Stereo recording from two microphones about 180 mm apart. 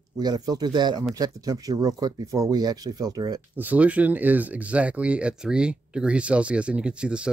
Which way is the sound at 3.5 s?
10° right (ahead or behind).